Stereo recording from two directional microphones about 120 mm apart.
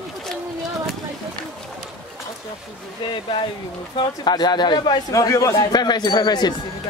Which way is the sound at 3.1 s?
45° left (ahead or behind).